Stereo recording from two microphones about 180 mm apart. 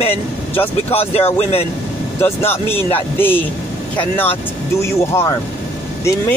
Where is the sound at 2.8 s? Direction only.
10° left (ahead or behind).